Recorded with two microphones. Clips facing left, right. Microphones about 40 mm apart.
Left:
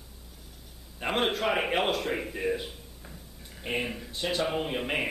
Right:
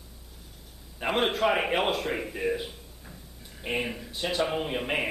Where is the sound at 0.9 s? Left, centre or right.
Centre.